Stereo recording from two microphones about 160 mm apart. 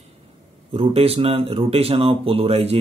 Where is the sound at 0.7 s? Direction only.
35° right (ahead or behind).